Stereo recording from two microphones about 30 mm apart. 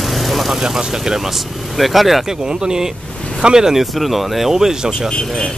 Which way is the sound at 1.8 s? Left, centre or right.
Centre.